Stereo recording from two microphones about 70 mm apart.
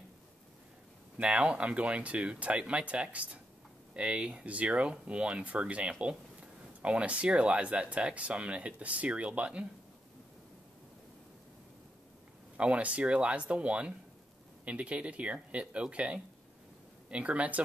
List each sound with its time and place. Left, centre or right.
1.1 s speech: centre
12.5 s speech: centre